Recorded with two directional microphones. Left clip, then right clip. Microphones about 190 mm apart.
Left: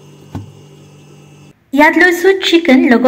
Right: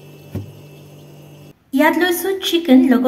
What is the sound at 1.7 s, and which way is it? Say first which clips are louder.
Speech: left 7 dB; 15° left (ahead or behind).